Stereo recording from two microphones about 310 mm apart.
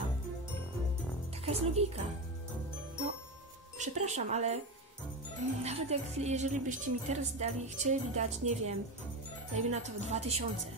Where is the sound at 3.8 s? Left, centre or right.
Right.